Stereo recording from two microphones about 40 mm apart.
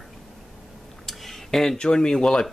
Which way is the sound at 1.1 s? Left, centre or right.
Centre.